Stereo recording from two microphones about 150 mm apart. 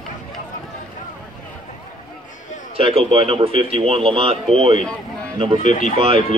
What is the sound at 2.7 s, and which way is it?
Speech, 40° right (ahead or behind).